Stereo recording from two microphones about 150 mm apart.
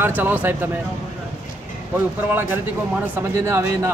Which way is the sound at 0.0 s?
15° right (ahead or behind).